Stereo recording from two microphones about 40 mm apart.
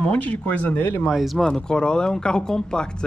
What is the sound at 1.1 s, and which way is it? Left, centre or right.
Speech, centre.